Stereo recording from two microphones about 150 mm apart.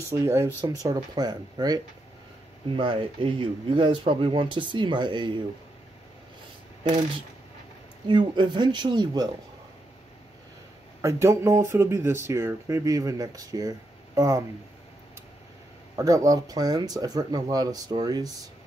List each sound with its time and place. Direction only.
0.1 s speech: 20° right (ahead or behind)
8.1 s speech: 30° right (ahead or behind)
11.0 s speech: 20° right (ahead or behind)
16.0 s speech: 20° right (ahead or behind)